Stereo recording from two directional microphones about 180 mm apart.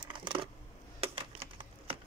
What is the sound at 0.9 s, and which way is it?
Computer keyboard, 30° right (ahead or behind).